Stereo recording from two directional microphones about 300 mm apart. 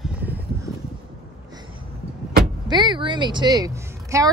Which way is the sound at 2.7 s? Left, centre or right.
Centre.